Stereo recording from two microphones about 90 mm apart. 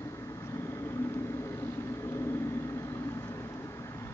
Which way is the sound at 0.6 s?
30° left (ahead or behind).